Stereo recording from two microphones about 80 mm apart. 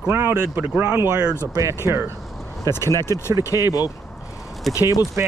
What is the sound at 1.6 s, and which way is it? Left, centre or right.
Speech, right.